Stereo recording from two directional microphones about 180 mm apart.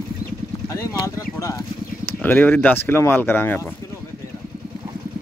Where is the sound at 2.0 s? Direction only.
10° left (ahead or behind).